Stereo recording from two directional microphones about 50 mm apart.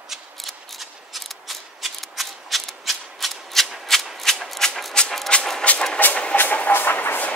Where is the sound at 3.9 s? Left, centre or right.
Centre.